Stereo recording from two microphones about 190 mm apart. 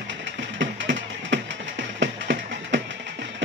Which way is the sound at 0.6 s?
75° right (ahead or behind).